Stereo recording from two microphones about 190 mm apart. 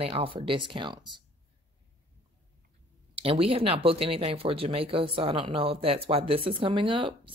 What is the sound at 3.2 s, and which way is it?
Speech, 30° right (ahead or behind).